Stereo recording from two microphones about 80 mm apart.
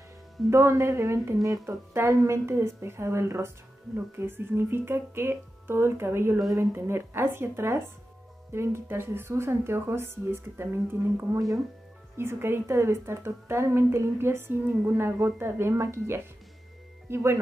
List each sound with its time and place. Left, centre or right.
0.5 s a woman's voice: right
14.7 s a woman's voice: centre
15.0 s a woman's voice: right